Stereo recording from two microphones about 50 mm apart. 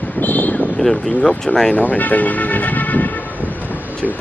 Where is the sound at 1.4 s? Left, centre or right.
Centre.